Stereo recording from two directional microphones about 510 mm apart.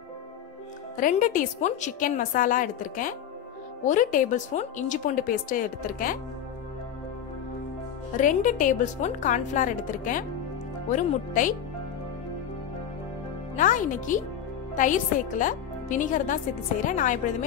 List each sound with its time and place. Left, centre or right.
0.9 s speech: centre
8.2 s speech: centre
13.6 s speech: centre